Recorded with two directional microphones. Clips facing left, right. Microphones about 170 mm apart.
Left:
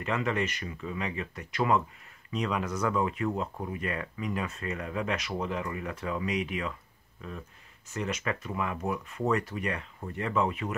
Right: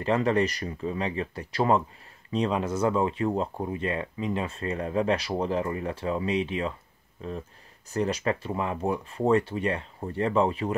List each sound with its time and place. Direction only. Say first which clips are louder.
0.0 s speech: right 6 dB; 35° right (ahead or behind)